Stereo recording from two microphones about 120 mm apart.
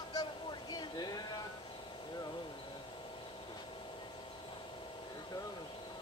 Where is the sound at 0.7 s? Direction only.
35° left (ahead or behind).